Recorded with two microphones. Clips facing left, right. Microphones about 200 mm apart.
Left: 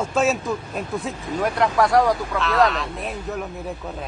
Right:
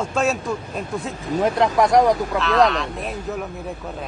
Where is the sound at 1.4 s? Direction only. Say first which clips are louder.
Right 2 dB; 20° right (ahead or behind).